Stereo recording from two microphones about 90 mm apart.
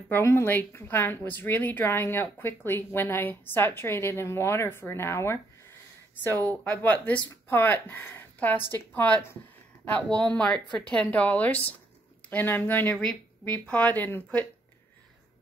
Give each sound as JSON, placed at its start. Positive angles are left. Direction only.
{"t": 0.1, "sound": "a woman's voice", "side_deg": 25}
{"t": 12.9, "sound": "speech", "side_deg": 5}